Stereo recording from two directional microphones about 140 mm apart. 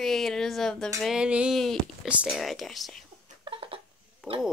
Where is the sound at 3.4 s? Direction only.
40° right (ahead or behind).